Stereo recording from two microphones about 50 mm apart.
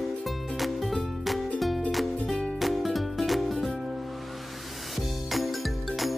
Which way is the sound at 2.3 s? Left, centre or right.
Centre.